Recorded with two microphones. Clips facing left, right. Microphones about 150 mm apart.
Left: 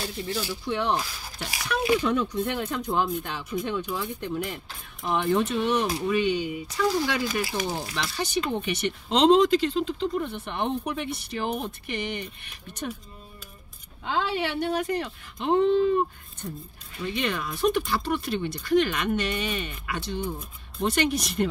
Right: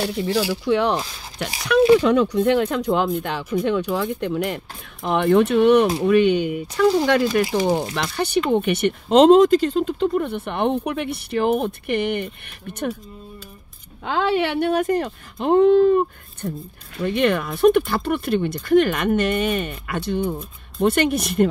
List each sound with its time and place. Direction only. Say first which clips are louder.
0.0 s speech: right 10 dB; 80° right
2.0 s speech: right 8 dB; 85° right
5.0 s speech: right 7 dB; 65° right (ahead or behind)
14.0 s speech: right 7 dB; 65° right (ahead or behind)